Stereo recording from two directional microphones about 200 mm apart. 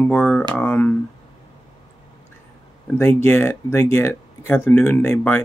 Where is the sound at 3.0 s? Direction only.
10° left (ahead or behind).